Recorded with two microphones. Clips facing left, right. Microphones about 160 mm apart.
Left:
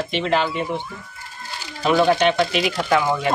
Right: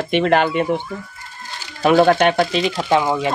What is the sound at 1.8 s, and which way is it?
Speech, 55° right (ahead or behind).